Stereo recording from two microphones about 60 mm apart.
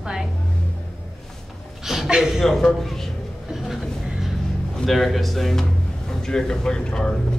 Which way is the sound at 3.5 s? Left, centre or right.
Centre.